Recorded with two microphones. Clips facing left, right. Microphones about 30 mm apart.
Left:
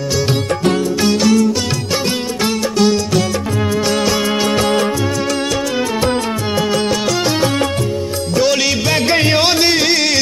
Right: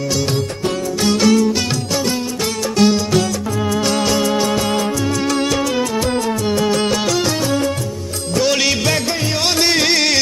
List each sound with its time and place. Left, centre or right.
2.6 s music: centre
6.7 s music: centre
8.3 s music: centre
9.0 s music: left
9.4 s music: centre